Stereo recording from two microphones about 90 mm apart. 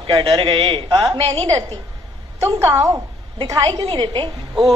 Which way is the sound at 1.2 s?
90° right.